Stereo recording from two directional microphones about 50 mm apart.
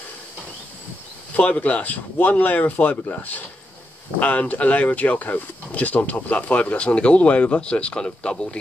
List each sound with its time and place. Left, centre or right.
1.4 s speech: left